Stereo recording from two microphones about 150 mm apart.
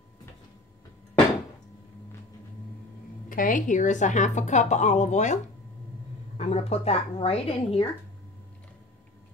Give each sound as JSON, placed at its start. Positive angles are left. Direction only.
{"t": 3.3, "sound": "a woman's voice", "side_deg": 65}